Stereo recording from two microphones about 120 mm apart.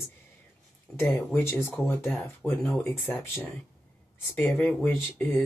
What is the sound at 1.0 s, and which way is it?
Speech, 20° left (ahead or behind).